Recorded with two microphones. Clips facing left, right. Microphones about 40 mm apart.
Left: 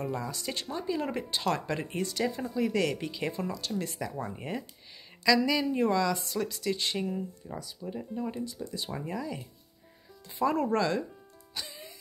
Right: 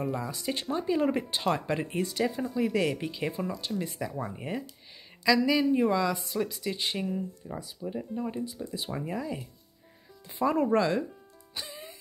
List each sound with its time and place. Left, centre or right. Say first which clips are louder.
0.0 s speech: right 2 dB; centre
7.1 s speech: right 1 dB; centre
8.6 s speech: right 2 dB; centre
10.4 s speech: right 2 dB; centre
11.6 s music: even; right